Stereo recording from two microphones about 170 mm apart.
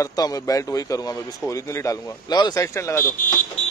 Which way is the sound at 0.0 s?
20° left (ahead or behind).